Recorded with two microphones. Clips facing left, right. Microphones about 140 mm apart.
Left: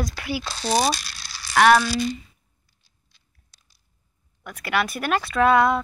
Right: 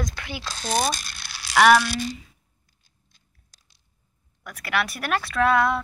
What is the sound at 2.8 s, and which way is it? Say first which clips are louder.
Chewing: right 2 dB; 45° right (ahead or behind).